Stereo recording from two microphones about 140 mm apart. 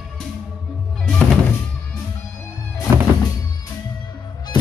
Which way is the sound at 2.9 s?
20° right (ahead or behind).